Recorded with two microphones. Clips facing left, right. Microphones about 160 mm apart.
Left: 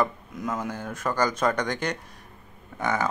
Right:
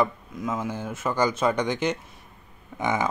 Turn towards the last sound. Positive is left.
turn(degrees=-15)  # may be behind; listen again after turning